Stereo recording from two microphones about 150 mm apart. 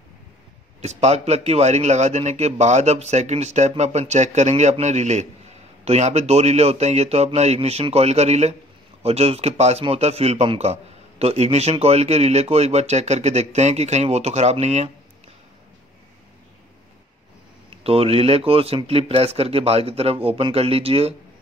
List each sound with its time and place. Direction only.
0.7 s a man's voice: 45° right (ahead or behind)
17.6 s speech: 40° right (ahead or behind)